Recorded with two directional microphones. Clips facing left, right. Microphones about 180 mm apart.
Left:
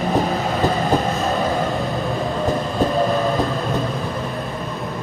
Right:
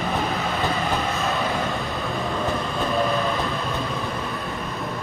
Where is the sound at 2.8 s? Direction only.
35° left (ahead or behind).